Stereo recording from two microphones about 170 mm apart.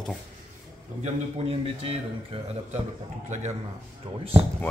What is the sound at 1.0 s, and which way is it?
A man's voice, 35° right (ahead or behind).